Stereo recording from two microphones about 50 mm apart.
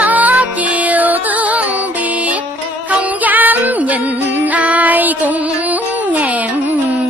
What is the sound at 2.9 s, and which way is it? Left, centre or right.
Music, right.